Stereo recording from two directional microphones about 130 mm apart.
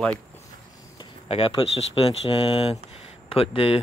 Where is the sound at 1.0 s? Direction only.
45° left (ahead or behind).